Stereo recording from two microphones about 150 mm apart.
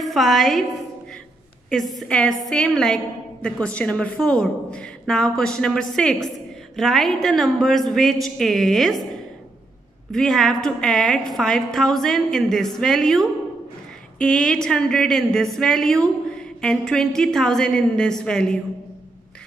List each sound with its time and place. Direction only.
0.0 s a woman's voice: centre (ahead or behind)
1.7 s a woman's voice: centre (ahead or behind)
10.1 s a woman's voice: centre (ahead or behind)